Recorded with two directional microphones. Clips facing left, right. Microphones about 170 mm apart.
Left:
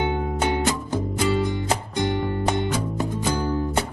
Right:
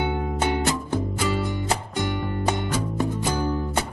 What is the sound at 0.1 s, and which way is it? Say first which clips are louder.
Music: left 1 dB; 15° left (ahead or behind).